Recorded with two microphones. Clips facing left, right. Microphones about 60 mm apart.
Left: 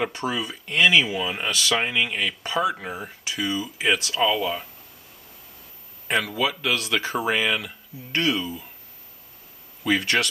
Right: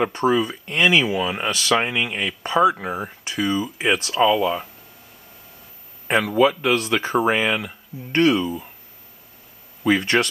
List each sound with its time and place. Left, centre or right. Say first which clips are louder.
0.1 s speech: right 8 dB; right
0.7 s speech: even; right
3.3 s speech: right 4 dB; right
4.1 s speech: right 5 dB; centre
6.0 s speech: right 7 dB; right
8.1 s speech: right 7 dB; right
9.8 s speech: right 4 dB; centre